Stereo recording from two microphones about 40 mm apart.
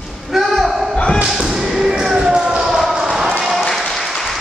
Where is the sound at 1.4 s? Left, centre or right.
Centre.